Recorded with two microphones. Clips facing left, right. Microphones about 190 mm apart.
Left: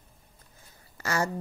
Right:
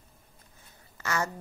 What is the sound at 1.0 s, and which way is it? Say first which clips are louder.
Speech: left 2 dB; 35° left (ahead or behind).